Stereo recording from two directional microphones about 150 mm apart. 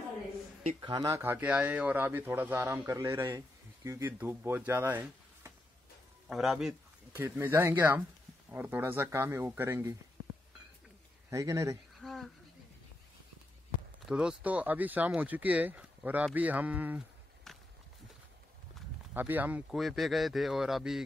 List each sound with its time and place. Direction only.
0.7 s a man's voice: 30° right (ahead or behind); by 5.5 s 15° right (ahead or behind)
6.2 s a man's voice: centre (ahead or behind)
7.1 s a man's voice: 15° right (ahead or behind)
11.2 s speech: 20° right (ahead or behind)
12.0 s insect: centre (ahead or behind)
14.0 s a man's voice: 5° right (ahead or behind)
17.5 s walk: centre (ahead or behind)
19.1 s a man's voice: 10° right (ahead or behind)
19.7 s speech: centre (ahead or behind)